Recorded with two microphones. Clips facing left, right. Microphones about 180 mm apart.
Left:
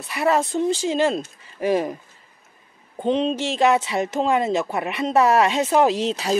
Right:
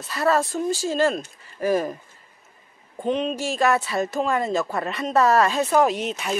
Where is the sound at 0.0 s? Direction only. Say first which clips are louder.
Left 1 dB; 15° left (ahead or behind).